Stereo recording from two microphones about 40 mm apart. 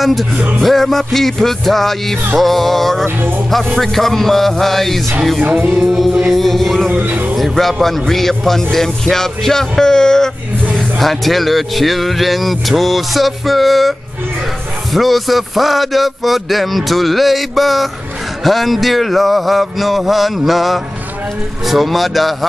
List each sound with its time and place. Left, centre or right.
0.0 s speech: centre
6.9 s speech: right
7.3 s speech: centre
11.0 s speech: centre